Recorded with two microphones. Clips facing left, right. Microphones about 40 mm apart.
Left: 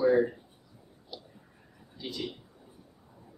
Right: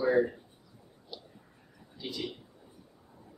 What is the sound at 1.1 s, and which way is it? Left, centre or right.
Whispering, centre.